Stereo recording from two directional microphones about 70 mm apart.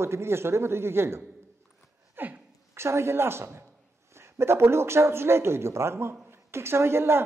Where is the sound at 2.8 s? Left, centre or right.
Right.